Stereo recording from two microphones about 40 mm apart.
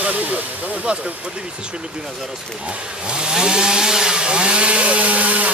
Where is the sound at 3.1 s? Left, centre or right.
Right.